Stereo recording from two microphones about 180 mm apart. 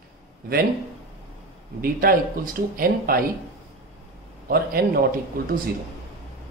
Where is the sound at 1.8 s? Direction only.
55° right (ahead or behind).